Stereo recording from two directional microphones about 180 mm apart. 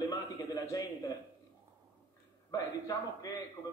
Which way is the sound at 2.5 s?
20° left (ahead or behind).